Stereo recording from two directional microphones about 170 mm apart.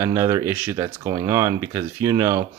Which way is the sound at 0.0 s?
20° right (ahead or behind).